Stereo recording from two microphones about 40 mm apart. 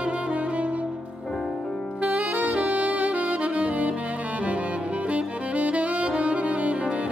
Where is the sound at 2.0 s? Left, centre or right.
Right.